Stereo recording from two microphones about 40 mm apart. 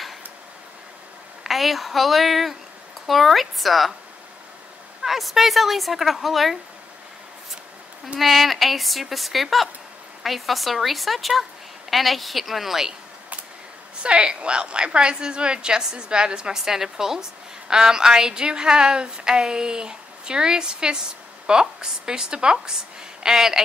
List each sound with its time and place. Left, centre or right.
1.4 s a woman's voice: centre
5.0 s a woman's voice: centre
8.2 s a woman's voice: centre
14.0 s a woman's voice: right